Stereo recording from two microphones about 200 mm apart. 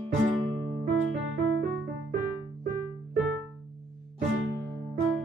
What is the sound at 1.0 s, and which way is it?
Music, 75° right (ahead or behind).